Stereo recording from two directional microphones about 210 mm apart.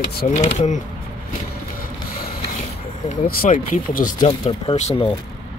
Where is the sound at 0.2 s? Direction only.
35° left (ahead or behind).